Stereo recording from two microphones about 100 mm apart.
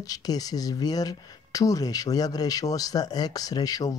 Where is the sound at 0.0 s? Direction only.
40° left (ahead or behind).